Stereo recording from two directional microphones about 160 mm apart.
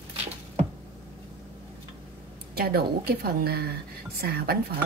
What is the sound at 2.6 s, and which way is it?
A woman's voice, 75° right (ahead or behind).